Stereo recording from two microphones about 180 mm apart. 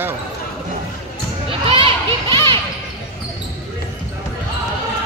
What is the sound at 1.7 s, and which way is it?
Children playing, 30° right (ahead or behind).